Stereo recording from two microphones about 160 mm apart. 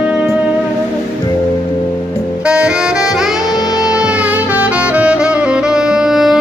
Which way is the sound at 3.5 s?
25° left (ahead or behind).